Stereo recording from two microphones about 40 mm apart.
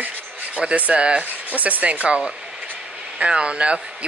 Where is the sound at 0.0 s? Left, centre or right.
Right.